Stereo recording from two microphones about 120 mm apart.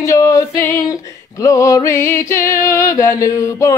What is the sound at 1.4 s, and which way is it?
Music, 25° left (ahead or behind).